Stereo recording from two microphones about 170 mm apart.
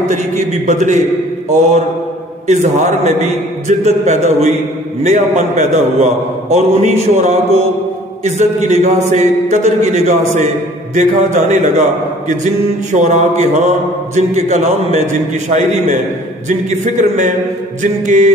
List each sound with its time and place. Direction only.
0.1 s a man's voice: 45° right (ahead or behind)
2.4 s a man's voice: 45° right (ahead or behind)
16.4 s a man's voice: 45° right (ahead or behind)